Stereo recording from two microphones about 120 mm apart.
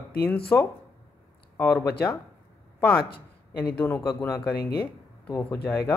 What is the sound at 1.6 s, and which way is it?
Speech, 20° left (ahead or behind).